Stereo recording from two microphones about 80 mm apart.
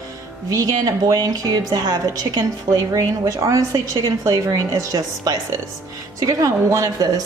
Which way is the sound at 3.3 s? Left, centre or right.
Right.